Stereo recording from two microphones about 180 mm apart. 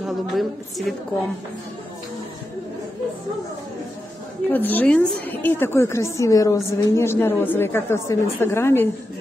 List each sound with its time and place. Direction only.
0.0 s a woman's voice: centre (ahead or behind)
4.5 s a woman's voice: 10° left (ahead or behind)